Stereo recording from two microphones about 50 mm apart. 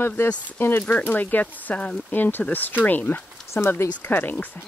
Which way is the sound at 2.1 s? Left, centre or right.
Left.